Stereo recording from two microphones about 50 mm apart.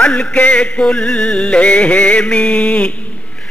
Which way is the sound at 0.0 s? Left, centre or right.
Left.